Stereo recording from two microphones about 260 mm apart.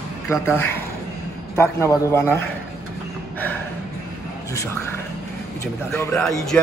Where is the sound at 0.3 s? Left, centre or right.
Centre.